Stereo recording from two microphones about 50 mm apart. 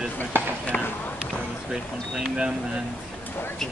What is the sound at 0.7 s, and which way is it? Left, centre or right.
Speech, left.